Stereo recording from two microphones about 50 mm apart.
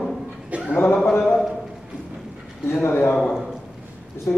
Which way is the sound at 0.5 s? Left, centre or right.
Right.